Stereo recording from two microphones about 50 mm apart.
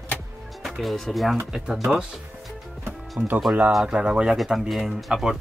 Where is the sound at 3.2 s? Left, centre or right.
Right.